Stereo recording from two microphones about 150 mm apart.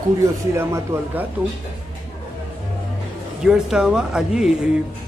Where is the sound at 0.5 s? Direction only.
15° right (ahead or behind).